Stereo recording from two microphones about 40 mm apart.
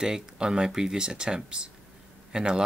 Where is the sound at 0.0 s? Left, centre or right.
Centre.